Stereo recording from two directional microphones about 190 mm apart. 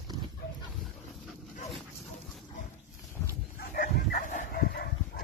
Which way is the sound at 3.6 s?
50° left (ahead or behind).